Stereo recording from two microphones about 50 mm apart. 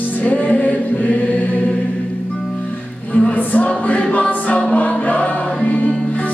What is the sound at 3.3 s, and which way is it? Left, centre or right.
Music, left.